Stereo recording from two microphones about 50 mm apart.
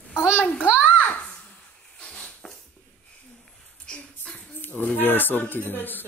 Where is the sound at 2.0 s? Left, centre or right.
Centre.